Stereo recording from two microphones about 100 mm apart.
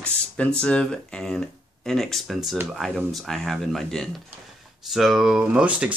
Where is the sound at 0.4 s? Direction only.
10° left (ahead or behind).